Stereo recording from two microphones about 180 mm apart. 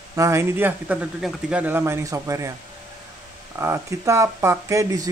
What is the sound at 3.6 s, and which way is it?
A man's voice, 15° right (ahead or behind).